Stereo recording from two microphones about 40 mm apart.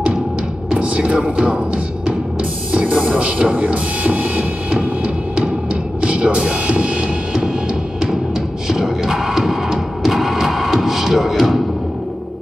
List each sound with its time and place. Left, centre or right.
0.7 s speech: right
2.7 s music: right
8.6 s a sound: centre